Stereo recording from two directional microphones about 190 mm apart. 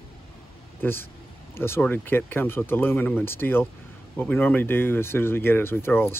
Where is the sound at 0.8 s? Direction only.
10° left (ahead or behind).